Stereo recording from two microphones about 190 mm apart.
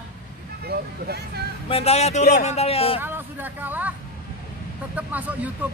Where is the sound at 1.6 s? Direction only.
30° left (ahead or behind).